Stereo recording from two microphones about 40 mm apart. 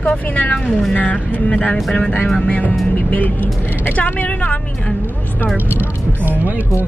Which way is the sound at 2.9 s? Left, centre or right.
Left.